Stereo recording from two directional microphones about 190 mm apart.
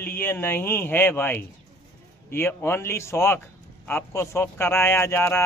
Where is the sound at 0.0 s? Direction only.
10° left (ahead or behind).